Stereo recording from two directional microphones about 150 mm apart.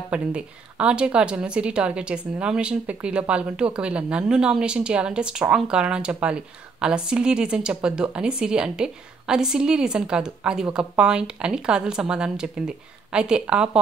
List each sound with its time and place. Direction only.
0.1 s a woman's voice: 10° right (ahead or behind)